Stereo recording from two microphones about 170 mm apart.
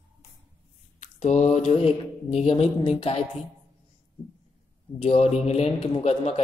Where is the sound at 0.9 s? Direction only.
45° left (ahead or behind).